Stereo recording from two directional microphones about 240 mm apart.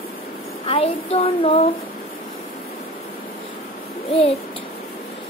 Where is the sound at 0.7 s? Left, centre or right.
Left.